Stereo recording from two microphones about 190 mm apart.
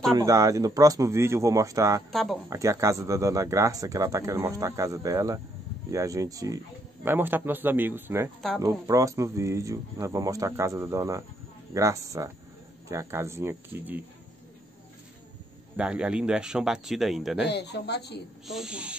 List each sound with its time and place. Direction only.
0.1 s speech: 20° right (ahead or behind)
15.7 s speech: 5° right (ahead or behind)
17.5 s speech: 60° left (ahead or behind)
18.5 s speech: 5° right (ahead or behind)